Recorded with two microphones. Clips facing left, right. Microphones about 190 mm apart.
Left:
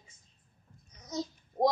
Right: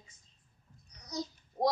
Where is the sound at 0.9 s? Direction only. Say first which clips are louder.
Left 3 dB; 25° left (ahead or behind).